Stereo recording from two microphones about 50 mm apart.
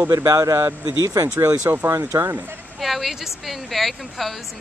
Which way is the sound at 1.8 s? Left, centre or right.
Right.